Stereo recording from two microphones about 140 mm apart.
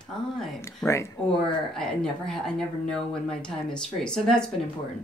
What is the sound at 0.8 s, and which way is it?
Speech, 5° left (ahead or behind).